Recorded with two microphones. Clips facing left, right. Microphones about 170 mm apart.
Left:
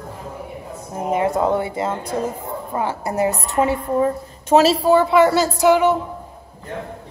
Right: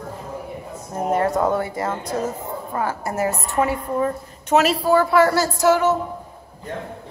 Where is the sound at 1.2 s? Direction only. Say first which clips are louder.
Left 1 dB; 20° left (ahead or behind).